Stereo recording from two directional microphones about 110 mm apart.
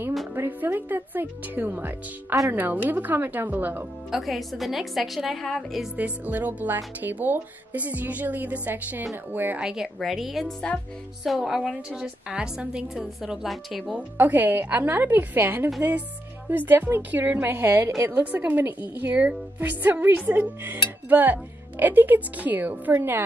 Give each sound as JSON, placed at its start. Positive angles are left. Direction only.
{"t": 0.3, "sound": "a woman's voice", "side_deg": -15}
{"t": 4.1, "sound": "a woman's voice", "side_deg": 0}
{"t": 5.9, "sound": "a woman's voice", "side_deg": -15}
{"t": 9.9, "sound": "a woman's voice", "side_deg": 0}
{"t": 13.9, "sound": "a woman's voice", "side_deg": -15}